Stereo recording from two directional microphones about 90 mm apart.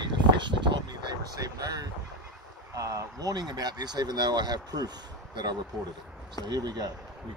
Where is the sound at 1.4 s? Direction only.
40° right (ahead or behind).